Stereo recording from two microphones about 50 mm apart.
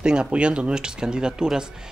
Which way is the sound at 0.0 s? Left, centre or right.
Centre.